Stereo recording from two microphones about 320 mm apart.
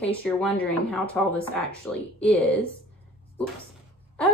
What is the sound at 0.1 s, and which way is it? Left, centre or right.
Speech, centre.